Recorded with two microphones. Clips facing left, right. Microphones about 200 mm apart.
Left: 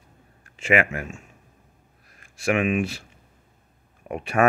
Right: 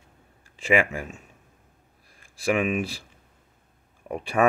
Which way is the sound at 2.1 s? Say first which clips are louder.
Left 1 dB; 30° right (ahead or behind).